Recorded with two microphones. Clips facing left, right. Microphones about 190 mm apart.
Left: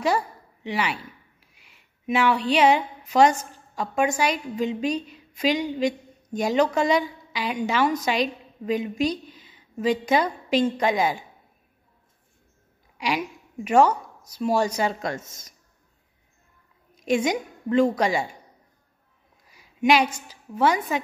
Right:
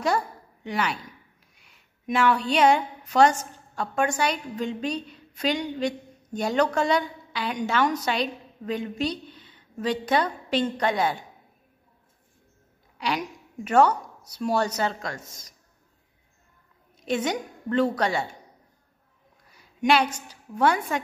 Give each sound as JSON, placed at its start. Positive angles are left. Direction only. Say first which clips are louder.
{"t": 0.7, "sound": "speech", "louder": "left 1 dB", "side_deg": 5}
{"t": 12.9, "sound": "speech", "louder": "left 2 dB", "side_deg": 10}
{"t": 15.0, "sound": "speech", "louder": "left 5 dB", "side_deg": 20}
{"t": 17.0, "sound": "a woman's voice", "louder": "left 3 dB", "side_deg": 10}
{"t": 19.5, "sound": "a woman's voice", "louder": "left 2 dB", "side_deg": 10}